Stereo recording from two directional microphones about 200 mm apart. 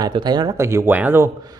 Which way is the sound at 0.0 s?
20° right (ahead or behind).